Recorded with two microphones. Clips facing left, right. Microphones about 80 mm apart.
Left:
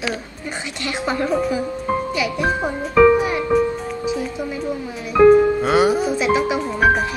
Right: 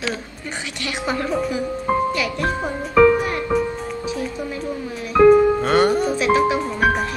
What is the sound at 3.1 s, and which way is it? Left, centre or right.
Music, centre.